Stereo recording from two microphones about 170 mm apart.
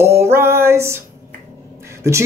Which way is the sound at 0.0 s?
15° right (ahead or behind).